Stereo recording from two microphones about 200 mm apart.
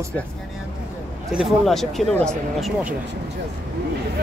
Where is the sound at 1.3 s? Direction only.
Centre (ahead or behind).